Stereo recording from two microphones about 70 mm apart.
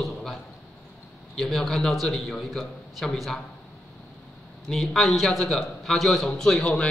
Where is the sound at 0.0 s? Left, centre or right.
Centre.